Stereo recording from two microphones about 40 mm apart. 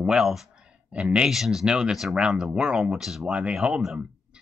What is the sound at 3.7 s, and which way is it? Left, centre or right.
Speech, centre.